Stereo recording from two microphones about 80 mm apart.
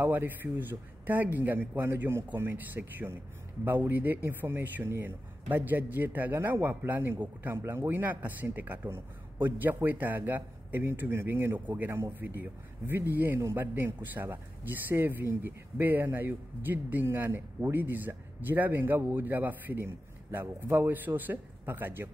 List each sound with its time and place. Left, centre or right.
0.0 s a man's voice: right